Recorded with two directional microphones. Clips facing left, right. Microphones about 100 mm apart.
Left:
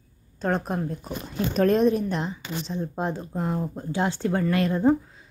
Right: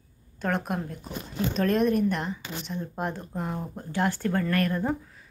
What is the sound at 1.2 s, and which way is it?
Speech, 50° left (ahead or behind).